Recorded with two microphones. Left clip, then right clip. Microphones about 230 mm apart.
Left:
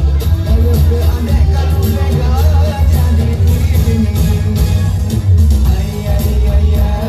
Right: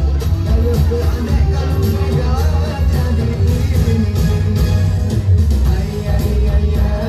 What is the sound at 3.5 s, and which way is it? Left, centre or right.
Music, left.